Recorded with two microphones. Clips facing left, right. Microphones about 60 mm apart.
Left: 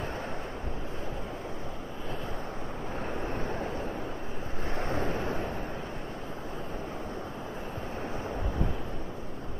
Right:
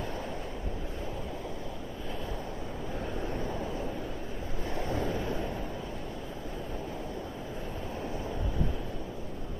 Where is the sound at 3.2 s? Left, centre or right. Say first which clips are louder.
Even; left.